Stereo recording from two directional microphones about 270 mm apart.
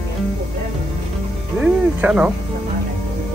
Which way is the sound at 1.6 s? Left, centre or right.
Centre.